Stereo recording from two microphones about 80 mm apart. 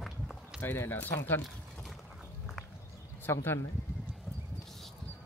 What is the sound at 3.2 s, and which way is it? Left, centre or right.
Speech, left.